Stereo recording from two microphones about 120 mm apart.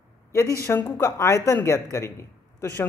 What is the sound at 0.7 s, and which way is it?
Speech, 20° left (ahead or behind).